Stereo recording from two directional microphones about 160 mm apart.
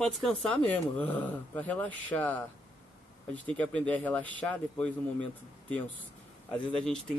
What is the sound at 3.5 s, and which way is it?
Speech, 10° left (ahead or behind).